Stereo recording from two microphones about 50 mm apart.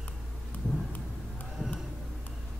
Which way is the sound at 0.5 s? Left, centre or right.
Left.